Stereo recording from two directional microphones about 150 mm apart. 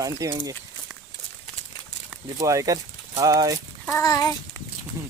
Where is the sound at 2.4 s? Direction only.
20° right (ahead or behind).